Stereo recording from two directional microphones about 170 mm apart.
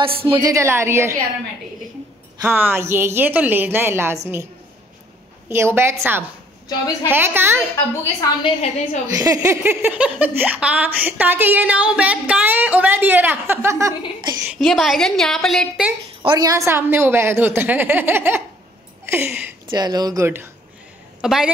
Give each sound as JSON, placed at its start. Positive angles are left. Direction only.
{"t": 0.0, "sound": "a woman's voice", "side_deg": -35}
{"t": 0.5, "sound": "speech", "side_deg": -15}
{"t": 2.4, "sound": "speech", "side_deg": -10}
{"t": 5.5, "sound": "speech", "side_deg": -15}
{"t": 8.4, "sound": "a woman's voice", "side_deg": 40}
{"t": 9.0, "sound": "speech", "side_deg": -20}
{"t": 14.4, "sound": "a woman's voice", "side_deg": -10}
{"t": 16.3, "sound": "speech", "side_deg": -20}
{"t": 19.7, "sound": "speech", "side_deg": -25}
{"t": 21.2, "sound": "a woman's voice", "side_deg": -5}